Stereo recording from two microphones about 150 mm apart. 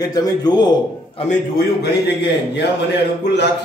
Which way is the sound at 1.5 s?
90° left.